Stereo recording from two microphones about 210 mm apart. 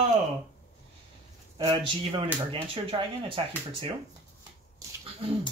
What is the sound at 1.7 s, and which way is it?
Speech, 25° right (ahead or behind).